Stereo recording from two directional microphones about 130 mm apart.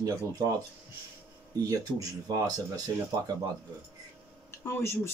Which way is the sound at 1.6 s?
25° right (ahead or behind).